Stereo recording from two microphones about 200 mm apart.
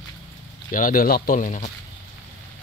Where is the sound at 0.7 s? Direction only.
45° left (ahead or behind).